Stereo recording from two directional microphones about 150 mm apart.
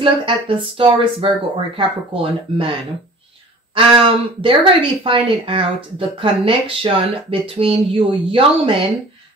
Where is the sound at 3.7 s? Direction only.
35° right (ahead or behind).